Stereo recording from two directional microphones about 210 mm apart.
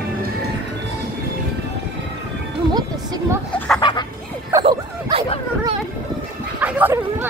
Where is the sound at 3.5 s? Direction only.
5° left (ahead or behind).